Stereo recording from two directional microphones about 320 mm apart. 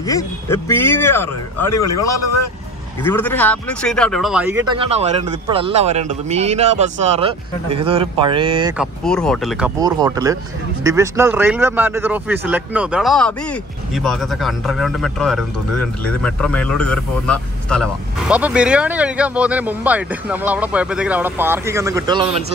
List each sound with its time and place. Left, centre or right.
0.0 s speech: centre
1.7 s a man's voice: left
3.0 s speech: centre
8.7 s speech: centre
9.8 s speech: centre